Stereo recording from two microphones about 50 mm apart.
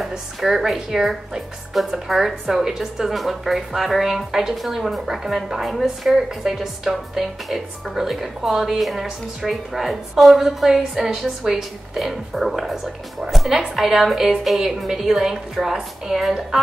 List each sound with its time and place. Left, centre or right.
0.4 s a woman's voice: centre